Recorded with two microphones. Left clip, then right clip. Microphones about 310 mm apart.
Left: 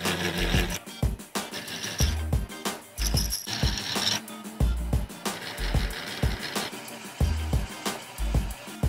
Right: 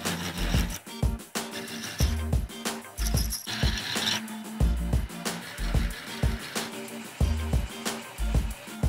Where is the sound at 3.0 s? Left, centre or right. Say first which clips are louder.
Left 3 dB; centre.